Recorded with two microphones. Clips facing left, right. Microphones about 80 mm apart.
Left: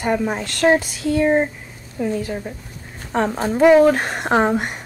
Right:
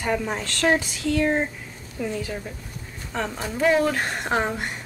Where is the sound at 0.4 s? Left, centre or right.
Left.